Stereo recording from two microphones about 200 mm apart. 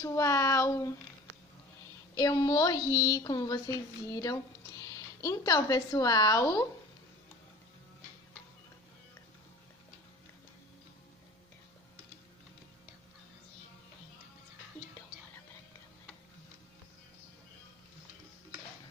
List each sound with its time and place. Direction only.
0.0 s a woman's voice: 15° left (ahead or behind)
2.1 s a woman's voice: 20° left (ahead or behind)